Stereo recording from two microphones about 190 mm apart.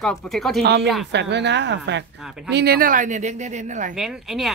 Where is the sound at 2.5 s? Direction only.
55° right (ahead or behind); by 3.9 s 40° right (ahead or behind).